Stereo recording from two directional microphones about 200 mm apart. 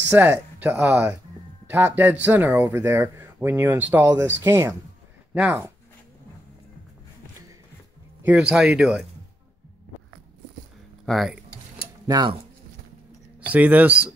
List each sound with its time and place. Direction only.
0.1 s speech: 10° right (ahead or behind)
8.3 s speech: 5° right (ahead or behind)
11.1 s speech: centre (ahead or behind)
12.1 s speech: 20° right (ahead or behind)
13.5 s speech: 10° right (ahead or behind)